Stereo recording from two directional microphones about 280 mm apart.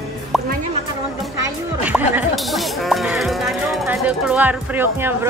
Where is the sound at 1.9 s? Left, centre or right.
Centre.